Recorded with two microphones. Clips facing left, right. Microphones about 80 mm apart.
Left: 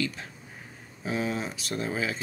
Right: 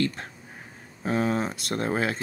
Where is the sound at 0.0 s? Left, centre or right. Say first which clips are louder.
Right 4 dB; right.